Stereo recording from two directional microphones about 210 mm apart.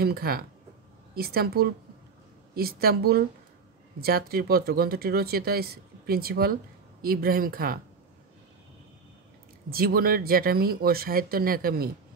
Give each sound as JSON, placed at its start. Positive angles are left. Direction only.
{"t": 0.0, "sound": "speech", "side_deg": -45}
{"t": 9.7, "sound": "speech", "side_deg": -45}